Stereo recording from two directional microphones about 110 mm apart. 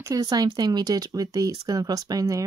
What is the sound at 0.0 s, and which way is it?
Speech, 35° right (ahead or behind).